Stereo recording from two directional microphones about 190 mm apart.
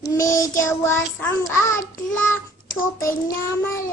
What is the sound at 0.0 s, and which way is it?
Child singing, 15° left (ahead or behind).